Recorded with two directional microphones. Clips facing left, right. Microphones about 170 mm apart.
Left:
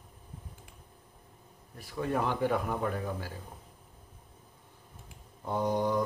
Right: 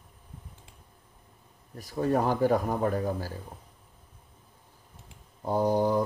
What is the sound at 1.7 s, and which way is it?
Speech, 40° right (ahead or behind).